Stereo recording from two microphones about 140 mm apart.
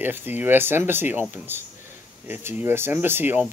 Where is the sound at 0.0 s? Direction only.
15° right (ahead or behind).